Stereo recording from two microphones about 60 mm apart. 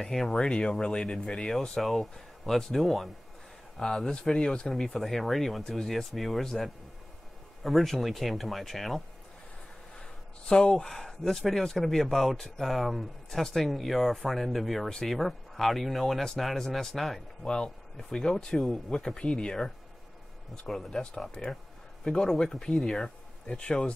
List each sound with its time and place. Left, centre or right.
0.0 s speech: centre
10.5 s speech: centre
21.4 s speech: centre
22.0 s speech: centre